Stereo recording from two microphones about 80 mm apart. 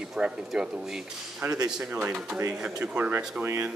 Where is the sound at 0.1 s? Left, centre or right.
Centre.